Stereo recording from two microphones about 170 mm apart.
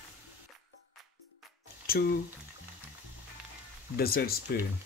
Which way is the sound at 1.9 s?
60° left (ahead or behind).